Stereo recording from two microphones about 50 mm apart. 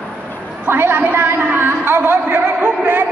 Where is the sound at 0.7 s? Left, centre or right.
Right.